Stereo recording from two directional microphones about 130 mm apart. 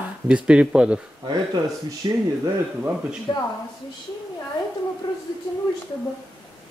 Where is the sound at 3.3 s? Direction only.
30° left (ahead or behind).